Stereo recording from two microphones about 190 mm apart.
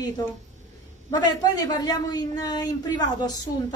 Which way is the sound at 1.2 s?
20° left (ahead or behind).